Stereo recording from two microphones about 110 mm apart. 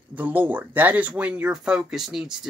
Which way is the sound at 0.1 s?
15° right (ahead or behind).